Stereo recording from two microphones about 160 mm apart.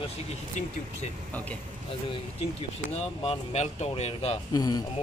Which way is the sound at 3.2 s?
40° left (ahead or behind).